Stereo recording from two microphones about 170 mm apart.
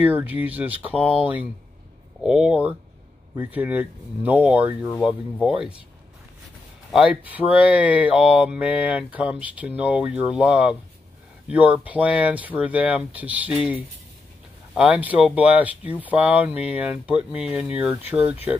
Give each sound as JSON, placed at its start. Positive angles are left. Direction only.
{"t": 0.0, "sound": "speech", "side_deg": -10}
{"t": 0.9, "sound": "speech", "side_deg": 35}
{"t": 1.2, "sound": "speech", "side_deg": -10}
{"t": 6.9, "sound": "speech", "side_deg": -5}